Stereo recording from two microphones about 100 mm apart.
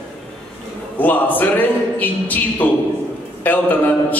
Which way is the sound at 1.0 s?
15° left (ahead or behind).